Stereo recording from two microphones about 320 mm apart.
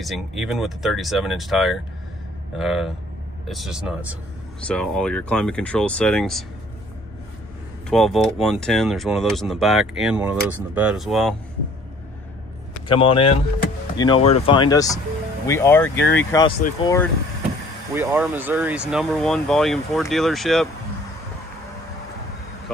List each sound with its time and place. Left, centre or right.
0.0 s speech: centre
7.9 s speech: centre
12.8 s speech: centre
17.9 s speech: centre